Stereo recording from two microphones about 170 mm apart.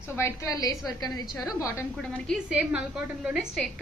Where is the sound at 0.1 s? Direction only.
15° left (ahead or behind).